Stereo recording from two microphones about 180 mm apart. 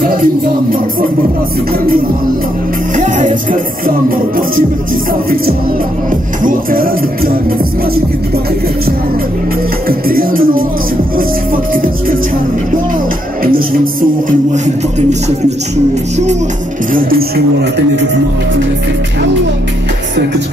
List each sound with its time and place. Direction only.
0.0 s speech: 50° right (ahead or behind)
3.0 s music: 45° right (ahead or behind)
6.4 s music: 50° right (ahead or behind)
9.8 s music: 55° right (ahead or behind)
14.5 s speech: 40° right (ahead or behind)
16.9 s music: 60° right (ahead or behind)